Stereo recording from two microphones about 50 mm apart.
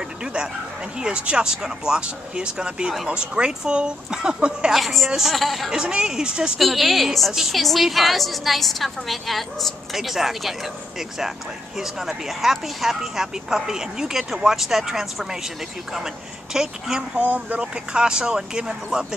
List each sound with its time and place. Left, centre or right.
0.2 s a sound: centre
0.9 s speech: centre
4.7 s a woman's voice: centre
5.7 s speech: centre
6.6 s a woman's voice: centre
16.5 s speech: centre
17.2 s speech: right